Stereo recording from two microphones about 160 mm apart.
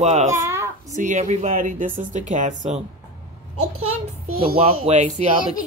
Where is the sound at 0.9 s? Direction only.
50° right (ahead or behind).